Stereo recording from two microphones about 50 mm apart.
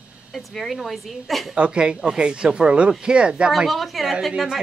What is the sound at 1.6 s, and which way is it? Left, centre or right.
Speech, centre.